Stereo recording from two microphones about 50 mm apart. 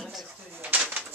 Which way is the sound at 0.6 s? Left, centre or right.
Right.